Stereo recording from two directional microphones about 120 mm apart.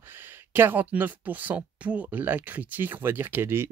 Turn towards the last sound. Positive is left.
turn(degrees=-20)  # may be behind; listen again after turning